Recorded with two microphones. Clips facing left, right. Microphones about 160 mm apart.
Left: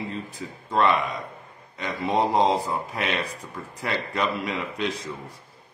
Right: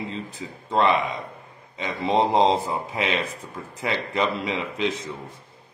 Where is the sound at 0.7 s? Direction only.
20° right (ahead or behind).